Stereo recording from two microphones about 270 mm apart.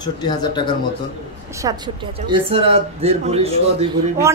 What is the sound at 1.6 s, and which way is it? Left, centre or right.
Speech, centre.